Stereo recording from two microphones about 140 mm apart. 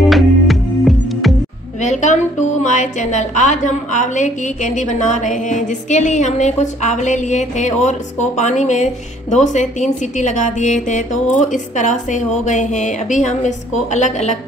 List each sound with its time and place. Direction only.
0.1 s music: centre (ahead or behind)
1.8 s a woman's voice: 55° left (ahead or behind)